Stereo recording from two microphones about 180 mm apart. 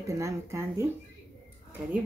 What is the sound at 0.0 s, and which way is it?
Speech, 15° right (ahead or behind).